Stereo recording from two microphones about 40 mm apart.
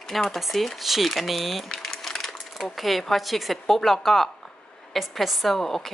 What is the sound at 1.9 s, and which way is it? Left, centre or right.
Sewing machine, centre.